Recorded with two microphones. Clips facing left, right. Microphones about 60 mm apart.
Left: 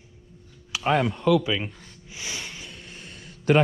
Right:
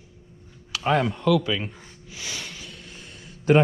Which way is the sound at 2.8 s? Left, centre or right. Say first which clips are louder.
Even; left.